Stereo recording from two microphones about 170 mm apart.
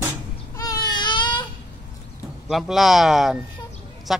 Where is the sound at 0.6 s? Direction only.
20° left (ahead or behind).